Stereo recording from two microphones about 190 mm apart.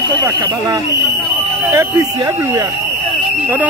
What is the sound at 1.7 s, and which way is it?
Speech, 20° right (ahead or behind).